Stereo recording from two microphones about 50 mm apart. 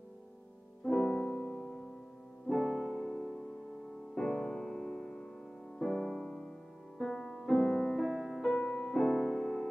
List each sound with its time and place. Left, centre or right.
0.8 s music: centre
8.0 s music: centre
8.5 s music: centre
9.0 s piano: centre